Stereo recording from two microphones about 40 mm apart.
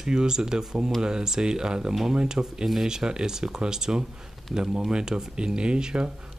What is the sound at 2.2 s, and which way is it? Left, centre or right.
Speech, centre.